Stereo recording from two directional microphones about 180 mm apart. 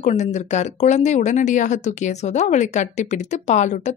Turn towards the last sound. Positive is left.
turn(degrees=40)  # may be behind; listen again after turning